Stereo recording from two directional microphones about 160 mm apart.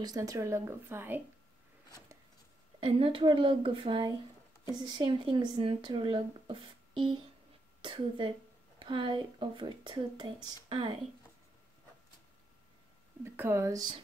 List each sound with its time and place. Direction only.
0.0 s speech: 20° right (ahead or behind)
2.8 s speech: 35° right (ahead or behind)
13.2 s speech: 15° right (ahead or behind)